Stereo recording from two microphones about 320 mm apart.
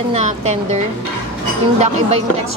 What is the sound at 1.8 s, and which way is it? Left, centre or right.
Speech, right.